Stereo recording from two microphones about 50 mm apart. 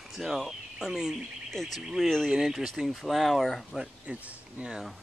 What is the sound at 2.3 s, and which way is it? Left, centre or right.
Speech, centre.